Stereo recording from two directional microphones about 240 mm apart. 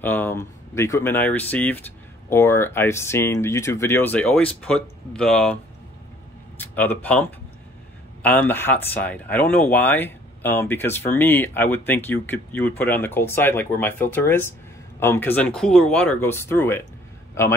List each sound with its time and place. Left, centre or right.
0.0 s speech: centre
6.6 s speech: centre